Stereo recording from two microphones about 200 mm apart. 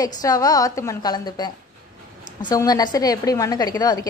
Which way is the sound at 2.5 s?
20° left (ahead or behind).